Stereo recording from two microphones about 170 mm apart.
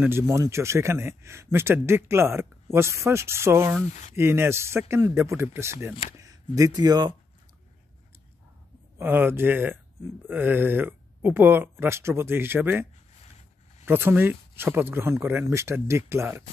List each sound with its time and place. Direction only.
0.0 s a man's voice: 15° right (ahead or behind)
8.9 s a man's voice: 10° right (ahead or behind)
13.8 s a man's voice: 10° right (ahead or behind)